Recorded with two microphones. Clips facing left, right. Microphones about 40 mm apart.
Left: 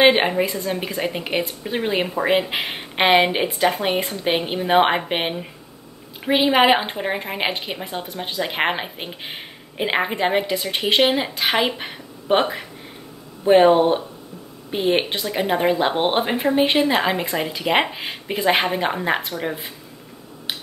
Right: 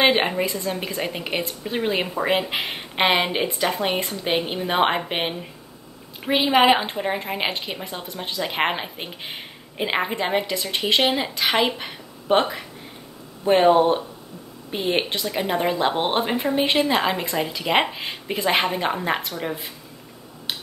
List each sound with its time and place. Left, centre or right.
0.0 s a woman's voice: centre